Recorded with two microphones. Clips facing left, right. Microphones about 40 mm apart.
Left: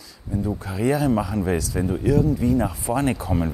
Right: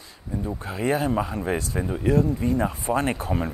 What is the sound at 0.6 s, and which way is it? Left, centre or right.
Speech, right.